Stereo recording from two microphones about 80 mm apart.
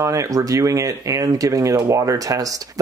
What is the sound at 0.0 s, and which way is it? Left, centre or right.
Speech, right.